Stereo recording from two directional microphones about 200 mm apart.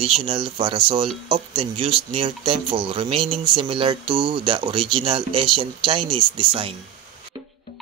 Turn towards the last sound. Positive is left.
turn(degrees=-25)  # may be behind; listen again after turning